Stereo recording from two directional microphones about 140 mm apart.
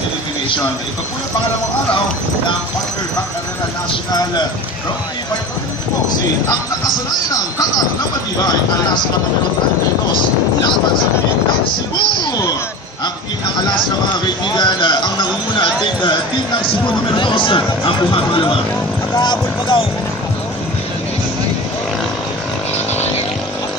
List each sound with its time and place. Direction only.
8.0 s speech: 30° left (ahead or behind)
14.2 s speech: 35° left (ahead or behind)